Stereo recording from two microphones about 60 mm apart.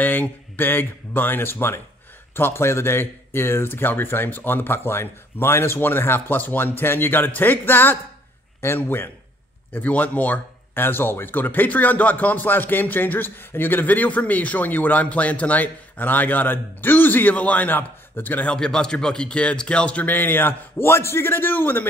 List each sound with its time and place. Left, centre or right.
0.0 s speech: left
9.7 s speech: left
18.5 s speech: centre; by 21.8 s left